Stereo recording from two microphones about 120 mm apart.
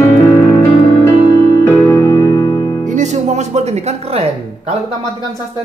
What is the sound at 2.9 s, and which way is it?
Music, 75° right (ahead or behind).